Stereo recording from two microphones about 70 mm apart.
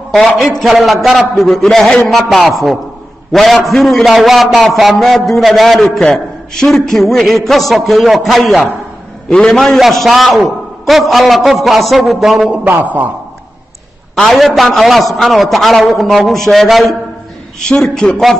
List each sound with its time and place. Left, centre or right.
0.1 s a man's voice: centre
12.6 s a man's voice: right
14.1 s a man's voice: centre